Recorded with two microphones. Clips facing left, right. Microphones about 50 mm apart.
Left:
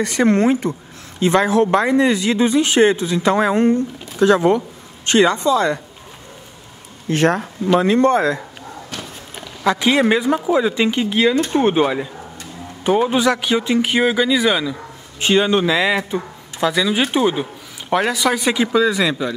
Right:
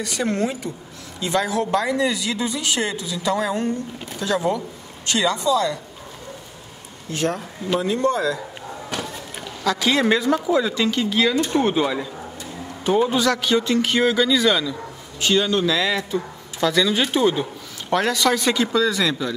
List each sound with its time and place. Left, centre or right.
0.0 s speech: left
7.1 s speech: left
9.6 s a woman's voice: left